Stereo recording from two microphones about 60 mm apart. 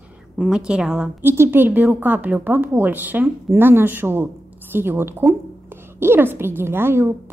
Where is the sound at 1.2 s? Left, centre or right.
Right.